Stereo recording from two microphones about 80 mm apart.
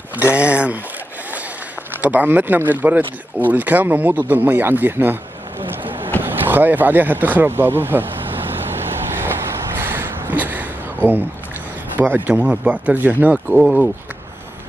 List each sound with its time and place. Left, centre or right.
0.1 s speech: centre
2.0 s speech: right
5.6 s boat: right
6.2 s speech: right
9.8 s a sound: right
12.0 s speech: centre
13.6 s speech: centre